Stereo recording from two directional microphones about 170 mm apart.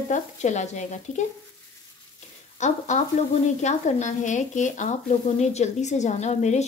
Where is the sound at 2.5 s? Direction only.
45° left (ahead or behind).